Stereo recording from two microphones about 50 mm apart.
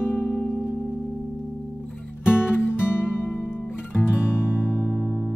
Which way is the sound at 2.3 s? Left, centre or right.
Left.